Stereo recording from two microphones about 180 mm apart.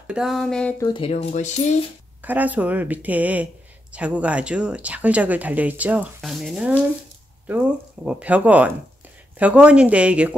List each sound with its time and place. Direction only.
0.0 s speech: 5° right (ahead or behind)
0.7 s speech: 25° left (ahead or behind); by 1.8 s 40° left (ahead or behind)
2.2 s speech: 10° right (ahead or behind)